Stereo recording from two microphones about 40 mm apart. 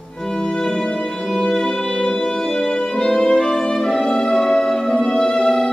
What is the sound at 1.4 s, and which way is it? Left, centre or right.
Music, centre.